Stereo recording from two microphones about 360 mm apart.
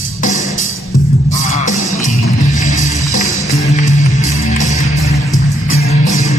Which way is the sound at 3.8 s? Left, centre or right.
Centre.